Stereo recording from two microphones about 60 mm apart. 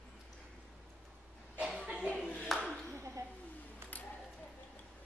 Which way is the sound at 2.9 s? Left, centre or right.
Right.